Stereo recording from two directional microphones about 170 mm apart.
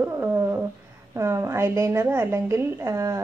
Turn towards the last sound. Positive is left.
turn(degrees=-15)  # may be behind; listen again after turning